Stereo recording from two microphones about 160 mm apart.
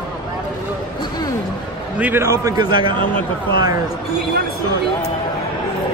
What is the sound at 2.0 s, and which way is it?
A man's voice, 10° right (ahead or behind).